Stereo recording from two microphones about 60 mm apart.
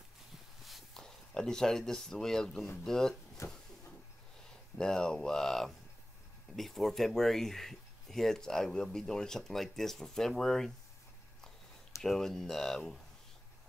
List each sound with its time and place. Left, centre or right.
0.7 s walk: centre
1.0 s speech: centre
3.4 s a sound: left
4.7 s speech: centre
12.0 s speech: centre